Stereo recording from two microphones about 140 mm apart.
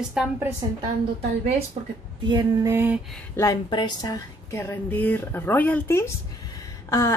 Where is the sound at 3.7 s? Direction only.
30° left (ahead or behind).